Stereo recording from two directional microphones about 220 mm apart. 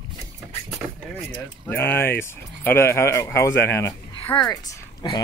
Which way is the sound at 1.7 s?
10° left (ahead or behind).